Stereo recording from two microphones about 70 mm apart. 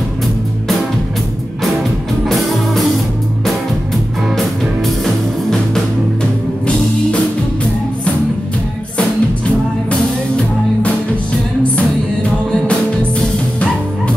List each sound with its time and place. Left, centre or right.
8.9 s music: centre